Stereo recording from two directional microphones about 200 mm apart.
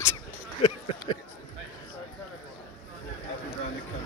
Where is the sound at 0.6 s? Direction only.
25° left (ahead or behind).